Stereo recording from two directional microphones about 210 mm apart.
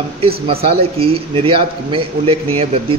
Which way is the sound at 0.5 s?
25° right (ahead or behind).